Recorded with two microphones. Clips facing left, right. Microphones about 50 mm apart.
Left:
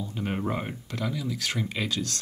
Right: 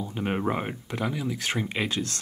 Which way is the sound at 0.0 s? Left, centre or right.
Right.